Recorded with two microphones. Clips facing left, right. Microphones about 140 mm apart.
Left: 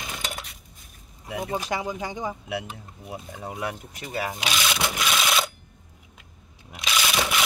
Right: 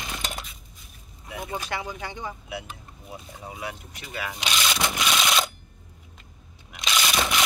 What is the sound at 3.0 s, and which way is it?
Speech, 60° left (ahead or behind).